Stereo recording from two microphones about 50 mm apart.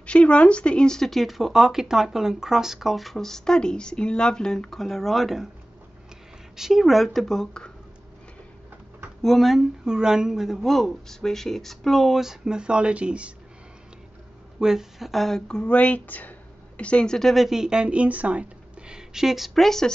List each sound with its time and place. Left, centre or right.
0.0 s speech: left; by 5.5 s centre
6.5 s a woman's voice: centre
9.2 s a woman's voice: centre
9.8 s speech: centre
14.6 s a woman's voice: centre
15.4 s a woman's voice: left
17.3 s a woman's voice: centre
17.6 s speech: centre